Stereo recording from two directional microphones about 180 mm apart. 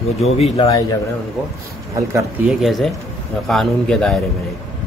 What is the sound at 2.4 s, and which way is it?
A man's voice, centre (ahead or behind).